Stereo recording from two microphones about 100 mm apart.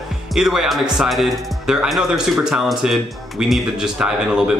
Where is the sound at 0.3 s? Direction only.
5° right (ahead or behind).